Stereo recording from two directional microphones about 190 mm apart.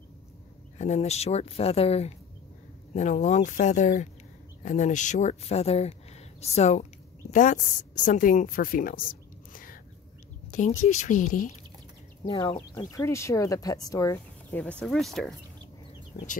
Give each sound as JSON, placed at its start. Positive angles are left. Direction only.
{"t": 0.7, "sound": "speech", "side_deg": 35}
{"t": 9.5, "sound": "a sound", "side_deg": 45}
{"t": 10.5, "sound": "speech", "side_deg": 40}
{"t": 12.3, "sound": "speech", "side_deg": 30}
{"t": 12.9, "sound": "speech", "side_deg": 15}
{"t": 16.1, "sound": "chicken", "side_deg": 40}